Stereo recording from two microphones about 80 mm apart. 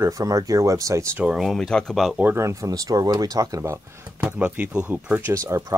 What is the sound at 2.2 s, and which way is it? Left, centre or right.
Speech, right.